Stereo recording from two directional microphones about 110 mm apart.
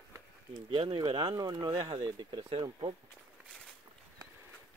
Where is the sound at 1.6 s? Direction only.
45° right (ahead or behind).